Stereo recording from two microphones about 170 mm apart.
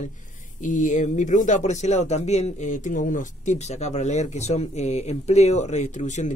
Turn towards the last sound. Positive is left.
turn(degrees=45)  # may be behind; listen again after turning